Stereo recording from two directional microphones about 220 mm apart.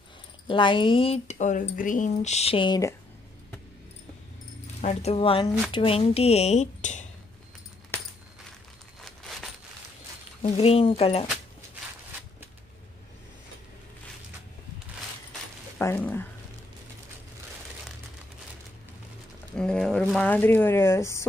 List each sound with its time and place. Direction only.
0.5 s speech: 20° left (ahead or behind)
4.8 s speech: 25° left (ahead or behind)
9.0 s a sound: centre (ahead or behind)
10.4 s speech: 25° left (ahead or behind)
15.8 s speech: 10° left (ahead or behind)
19.5 s speech: 5° left (ahead or behind)